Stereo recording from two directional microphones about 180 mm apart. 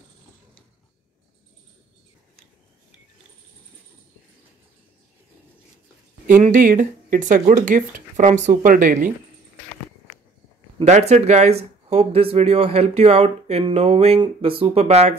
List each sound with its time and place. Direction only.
6.4 s speech: 45° right (ahead or behind)
10.8 s speech: 40° right (ahead or behind)